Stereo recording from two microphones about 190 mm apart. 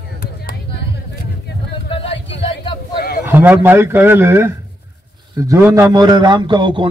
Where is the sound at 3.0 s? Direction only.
55° left (ahead or behind).